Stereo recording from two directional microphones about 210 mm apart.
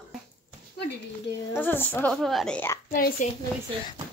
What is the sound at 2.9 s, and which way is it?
Speech, 40° left (ahead or behind).